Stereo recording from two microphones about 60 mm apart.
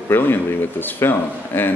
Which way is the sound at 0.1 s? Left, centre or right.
Left.